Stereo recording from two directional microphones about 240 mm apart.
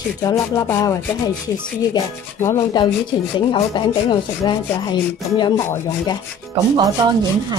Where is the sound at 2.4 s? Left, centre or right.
Centre.